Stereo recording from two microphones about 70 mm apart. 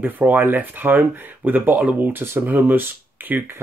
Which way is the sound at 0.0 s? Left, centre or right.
Right.